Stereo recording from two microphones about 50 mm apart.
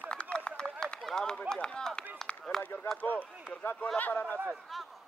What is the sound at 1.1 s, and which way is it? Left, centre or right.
Speech, centre.